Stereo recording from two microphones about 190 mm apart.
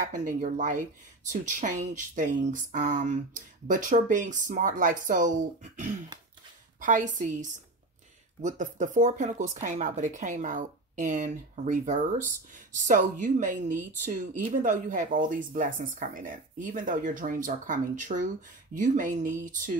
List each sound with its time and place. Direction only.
0.1 s speech: 45° right (ahead or behind)